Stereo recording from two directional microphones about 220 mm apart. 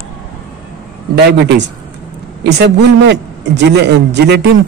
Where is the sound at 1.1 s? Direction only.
50° right (ahead or behind).